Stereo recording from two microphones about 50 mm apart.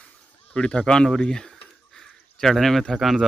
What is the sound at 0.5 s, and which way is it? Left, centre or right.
Speech, left.